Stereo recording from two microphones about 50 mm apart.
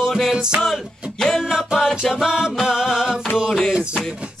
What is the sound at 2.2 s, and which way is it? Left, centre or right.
Music, centre.